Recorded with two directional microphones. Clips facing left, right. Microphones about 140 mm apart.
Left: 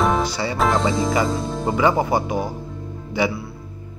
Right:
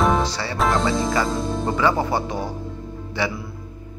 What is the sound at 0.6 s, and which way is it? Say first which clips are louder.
Speech: left 1 dB; centre (ahead or behind).